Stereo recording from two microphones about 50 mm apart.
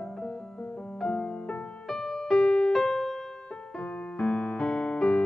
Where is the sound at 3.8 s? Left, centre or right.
Centre.